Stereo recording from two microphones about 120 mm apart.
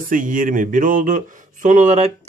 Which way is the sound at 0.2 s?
90° right.